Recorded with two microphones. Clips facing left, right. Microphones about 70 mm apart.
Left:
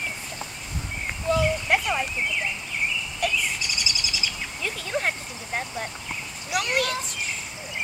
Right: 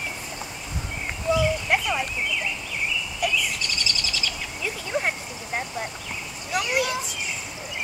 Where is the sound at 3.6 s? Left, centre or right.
Centre.